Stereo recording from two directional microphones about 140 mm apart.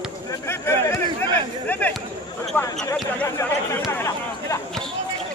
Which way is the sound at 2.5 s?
15° left (ahead or behind).